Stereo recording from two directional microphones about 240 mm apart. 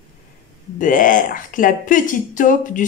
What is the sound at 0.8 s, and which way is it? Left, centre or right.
Speech, left.